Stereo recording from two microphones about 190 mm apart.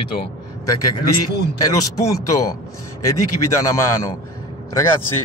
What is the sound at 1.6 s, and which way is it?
Speech, 20° left (ahead or behind).